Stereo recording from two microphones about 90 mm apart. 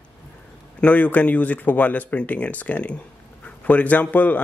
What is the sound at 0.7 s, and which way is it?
Speech, 15° left (ahead or behind).